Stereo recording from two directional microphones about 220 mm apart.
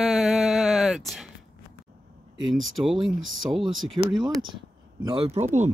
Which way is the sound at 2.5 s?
Centre (ahead or behind).